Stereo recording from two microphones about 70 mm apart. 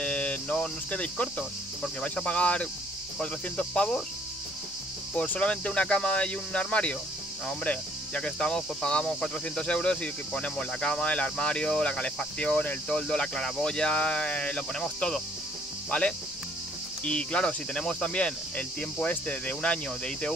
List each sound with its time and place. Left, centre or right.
0.0 s cricket: centre
1.8 s speech: centre
5.1 s speech: left